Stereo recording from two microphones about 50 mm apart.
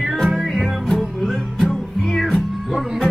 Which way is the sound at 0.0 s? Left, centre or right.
Centre.